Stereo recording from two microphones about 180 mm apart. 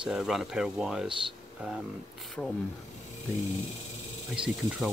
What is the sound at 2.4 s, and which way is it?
Speech, 5° left (ahead or behind).